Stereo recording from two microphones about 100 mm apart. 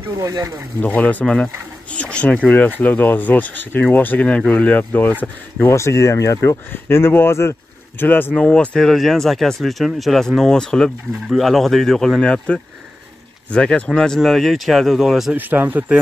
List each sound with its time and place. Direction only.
0.2 s speech: 35° right (ahead or behind)
0.7 s speech: 15° left (ahead or behind)
5.7 s speech: 30° left (ahead or behind)
8.5 s speech: 5° left (ahead or behind)
15.3 s speech: 20° right (ahead or behind)